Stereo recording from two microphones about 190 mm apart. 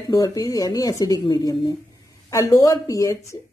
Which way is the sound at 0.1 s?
20° left (ahead or behind).